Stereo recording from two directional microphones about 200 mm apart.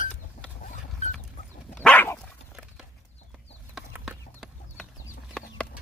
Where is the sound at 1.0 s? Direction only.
35° left (ahead or behind).